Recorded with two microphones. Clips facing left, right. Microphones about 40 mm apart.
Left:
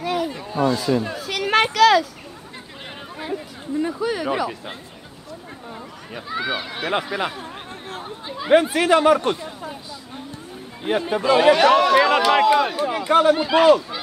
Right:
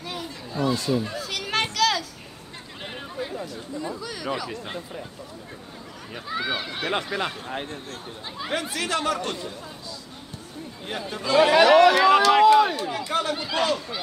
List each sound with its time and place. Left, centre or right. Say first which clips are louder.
0.3 s a sound: left 6 dB; left
0.7 s speech: left 3 dB; centre
1.1 s children playing: left 3 dB; centre
1.4 s children playing: left 9 dB; centre
3.7 s a sound: left 11 dB; left
6.1 s speech: left 3 dB; centre
8.5 s speech: left 12 dB; left
10.8 s speech: left 11 dB; left
11.6 s a man's voice: even; centre